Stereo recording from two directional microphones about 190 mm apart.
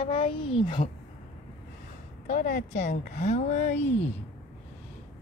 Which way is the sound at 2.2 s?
45° left (ahead or behind).